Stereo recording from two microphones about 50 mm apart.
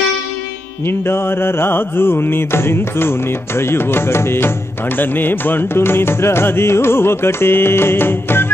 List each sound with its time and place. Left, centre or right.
0.8 s music: left
4.9 s music: left